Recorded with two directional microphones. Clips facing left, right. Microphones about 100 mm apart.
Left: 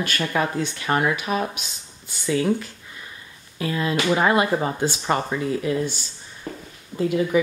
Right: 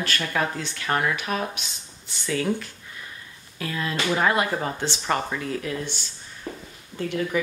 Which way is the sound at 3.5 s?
10° left (ahead or behind).